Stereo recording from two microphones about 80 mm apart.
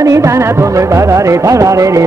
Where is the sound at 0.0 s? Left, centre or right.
Right.